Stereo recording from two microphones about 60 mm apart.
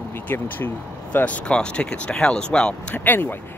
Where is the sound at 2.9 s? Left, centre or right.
Left.